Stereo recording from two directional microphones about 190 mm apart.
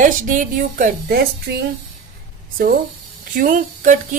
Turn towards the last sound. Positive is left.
turn(degrees=-45)  # may be behind; listen again after turning